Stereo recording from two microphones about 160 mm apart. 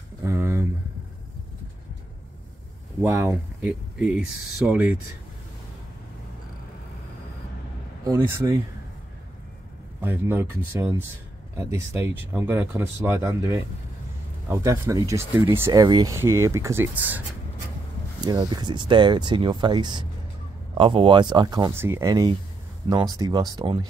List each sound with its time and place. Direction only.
0.2 s a sound: 20° right (ahead or behind)
3.0 s speech: 10° right (ahead or behind)
8.0 s speech: 15° right (ahead or behind)
10.0 s speech: 15° right (ahead or behind)
18.2 s speech: 25° right (ahead or behind)
21.7 s speech: 15° right (ahead or behind)